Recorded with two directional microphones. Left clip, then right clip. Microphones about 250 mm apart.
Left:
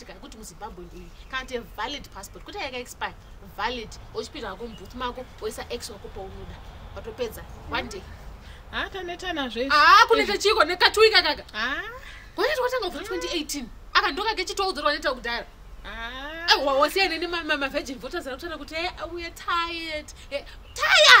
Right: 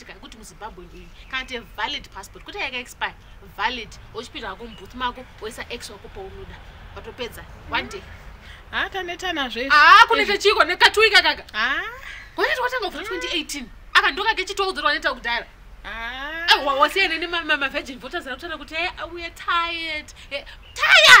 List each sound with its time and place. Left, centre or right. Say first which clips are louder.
1.3 s a woman's voice: right 2 dB; centre
7.0 s a woman's voice: left 1 dB; centre